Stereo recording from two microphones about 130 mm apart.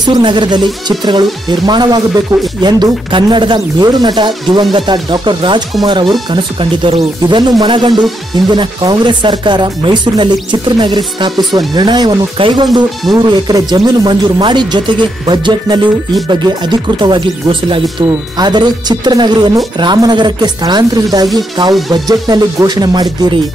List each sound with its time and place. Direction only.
0.0 s speech: 35° right (ahead or behind)
17.0 s speech: 40° right (ahead or behind)